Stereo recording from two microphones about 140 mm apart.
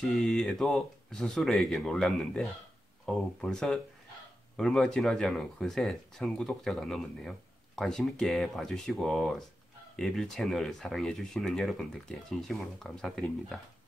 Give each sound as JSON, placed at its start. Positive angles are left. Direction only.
{"t": 0.0, "sound": "speech", "side_deg": 5}